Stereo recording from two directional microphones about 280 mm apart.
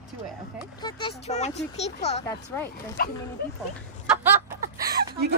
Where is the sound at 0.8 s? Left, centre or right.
Centre.